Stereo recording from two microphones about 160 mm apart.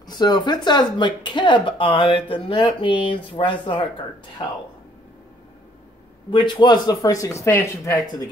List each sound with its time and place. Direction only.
0.0 s speech: 25° left (ahead or behind)
6.3 s speech: 30° left (ahead or behind)